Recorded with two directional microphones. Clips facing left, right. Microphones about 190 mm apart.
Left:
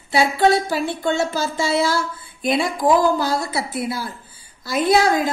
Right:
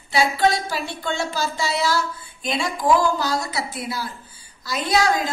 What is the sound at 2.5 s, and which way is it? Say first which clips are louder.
Speech: left 2 dB; 55° left (ahead or behind).